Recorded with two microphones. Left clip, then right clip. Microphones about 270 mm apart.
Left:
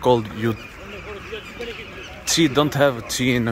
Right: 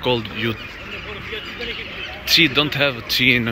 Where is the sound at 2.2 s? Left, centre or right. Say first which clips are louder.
Right 3 dB; left.